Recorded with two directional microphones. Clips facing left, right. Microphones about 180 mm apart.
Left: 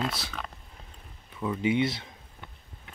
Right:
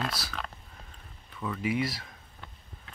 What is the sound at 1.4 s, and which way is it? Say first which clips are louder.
Speech: left 4 dB; 20° left (ahead or behind).